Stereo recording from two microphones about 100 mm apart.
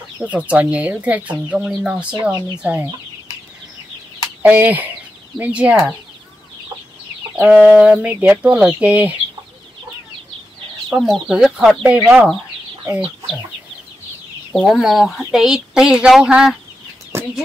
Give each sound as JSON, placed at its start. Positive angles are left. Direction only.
{"t": 0.2, "sound": "speech", "side_deg": -15}
{"t": 4.4, "sound": "speech", "side_deg": -15}
{"t": 7.3, "sound": "speech", "side_deg": -10}
{"t": 10.9, "sound": "speech", "side_deg": 0}
{"t": 14.5, "sound": "speech", "side_deg": 0}
{"t": 17.1, "sound": "chicken", "side_deg": -25}